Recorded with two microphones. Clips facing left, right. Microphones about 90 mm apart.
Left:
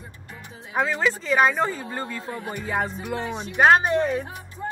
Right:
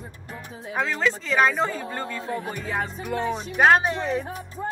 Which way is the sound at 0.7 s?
10° left (ahead or behind).